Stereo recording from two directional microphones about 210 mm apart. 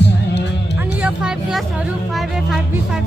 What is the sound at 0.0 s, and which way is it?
Music, 55° left (ahead or behind).